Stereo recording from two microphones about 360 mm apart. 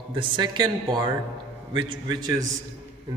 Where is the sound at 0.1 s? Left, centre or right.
Centre.